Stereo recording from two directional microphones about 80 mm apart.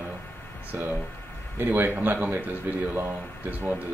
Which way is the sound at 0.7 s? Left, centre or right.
Right.